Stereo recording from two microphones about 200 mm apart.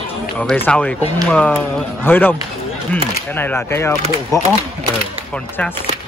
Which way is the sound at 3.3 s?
10° left (ahead or behind).